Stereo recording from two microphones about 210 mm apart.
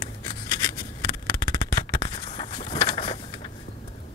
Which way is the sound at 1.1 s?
20° left (ahead or behind).